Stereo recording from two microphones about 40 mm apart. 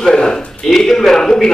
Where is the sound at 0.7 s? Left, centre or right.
Centre.